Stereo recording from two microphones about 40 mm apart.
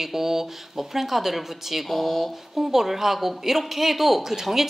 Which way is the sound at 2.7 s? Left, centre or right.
Centre.